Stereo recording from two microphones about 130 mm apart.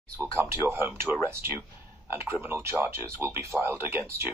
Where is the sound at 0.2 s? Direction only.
20° right (ahead or behind).